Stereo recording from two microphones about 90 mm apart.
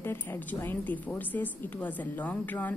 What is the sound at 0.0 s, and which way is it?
A woman's voice, 25° left (ahead or behind).